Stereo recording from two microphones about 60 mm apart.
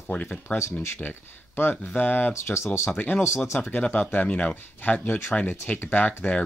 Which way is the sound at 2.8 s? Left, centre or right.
Left.